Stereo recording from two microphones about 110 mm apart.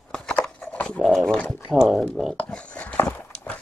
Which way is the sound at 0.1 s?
10° left (ahead or behind).